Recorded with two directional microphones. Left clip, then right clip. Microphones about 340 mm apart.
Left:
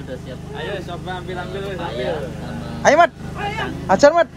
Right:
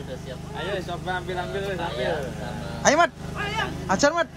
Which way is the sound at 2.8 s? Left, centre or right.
Centre.